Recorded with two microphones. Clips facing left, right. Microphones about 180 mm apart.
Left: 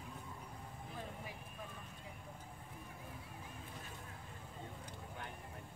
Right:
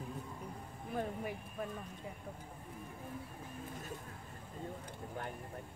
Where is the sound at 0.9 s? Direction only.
60° right (ahead or behind).